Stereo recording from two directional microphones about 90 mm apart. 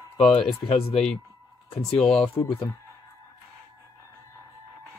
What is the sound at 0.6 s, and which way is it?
Speech, 90° left.